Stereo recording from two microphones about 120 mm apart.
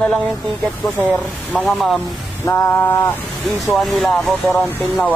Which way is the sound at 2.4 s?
25° left (ahead or behind).